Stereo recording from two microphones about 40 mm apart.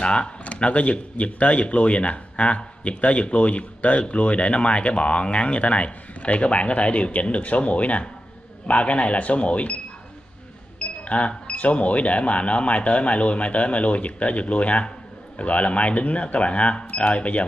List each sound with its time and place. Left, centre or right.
0.0 s speech: left
10.8 s speech: left